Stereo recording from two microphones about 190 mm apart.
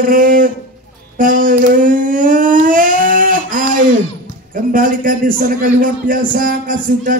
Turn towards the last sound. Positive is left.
turn(degrees=-45)  # may be behind; listen again after turning